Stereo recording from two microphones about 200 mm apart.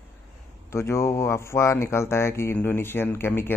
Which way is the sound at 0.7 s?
15° left (ahead or behind).